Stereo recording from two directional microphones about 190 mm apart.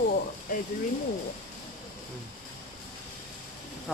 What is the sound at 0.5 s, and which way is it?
Speech, 45° left (ahead or behind).